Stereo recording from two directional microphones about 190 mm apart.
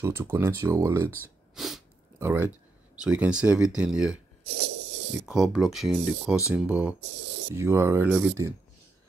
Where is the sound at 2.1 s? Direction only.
10° right (ahead or behind).